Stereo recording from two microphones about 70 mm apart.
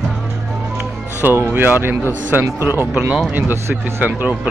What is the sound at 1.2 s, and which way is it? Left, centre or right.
Speech, right.